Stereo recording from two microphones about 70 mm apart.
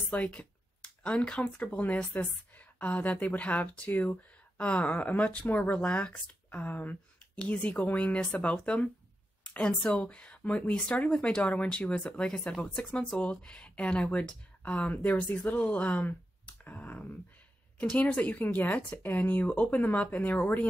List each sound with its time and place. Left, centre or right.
0.1 s a woman's voice: left